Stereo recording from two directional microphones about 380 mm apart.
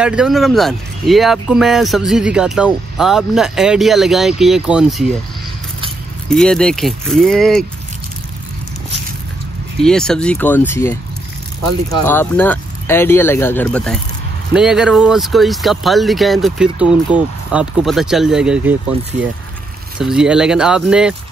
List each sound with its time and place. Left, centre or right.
0.0 s speech: centre
6.2 s speech: centre
9.8 s speech: centre
20.0 s speech: centre